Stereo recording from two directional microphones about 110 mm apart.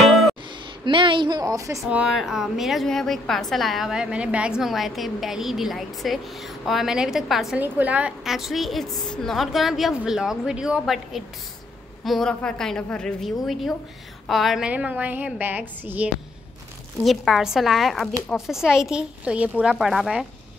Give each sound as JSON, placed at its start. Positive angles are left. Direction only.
{"t": 0.8, "sound": "a woman's voice", "side_deg": -50}
{"t": 1.4, "sound": "speech", "side_deg": -30}
{"t": 1.9, "sound": "a woman's voice", "side_deg": -5}
{"t": 7.5, "sound": "a woman's voice", "side_deg": -15}
{"t": 8.2, "sound": "a woman's voice", "side_deg": -5}
{"t": 14.7, "sound": "a woman's voice", "side_deg": -15}
{"t": 17.0, "sound": "a woman's voice", "side_deg": 0}